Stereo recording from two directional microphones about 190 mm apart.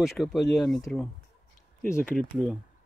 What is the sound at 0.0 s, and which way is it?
Speech, centre (ahead or behind).